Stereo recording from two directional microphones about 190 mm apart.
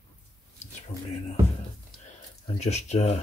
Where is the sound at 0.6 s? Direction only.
40° left (ahead or behind).